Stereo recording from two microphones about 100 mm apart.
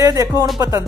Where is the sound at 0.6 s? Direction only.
30° right (ahead or behind).